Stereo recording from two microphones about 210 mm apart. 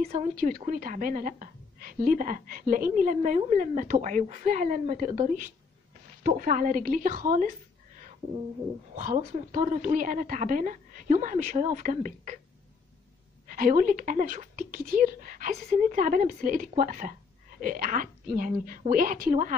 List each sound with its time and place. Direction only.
0.1 s speech: 40° right (ahead or behind)
6.2 s speech: 40° right (ahead or behind)
8.9 s speech: 40° right (ahead or behind)
13.5 s speech: 40° right (ahead or behind)